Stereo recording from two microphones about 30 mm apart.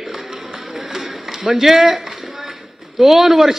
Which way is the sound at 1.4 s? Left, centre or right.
Centre.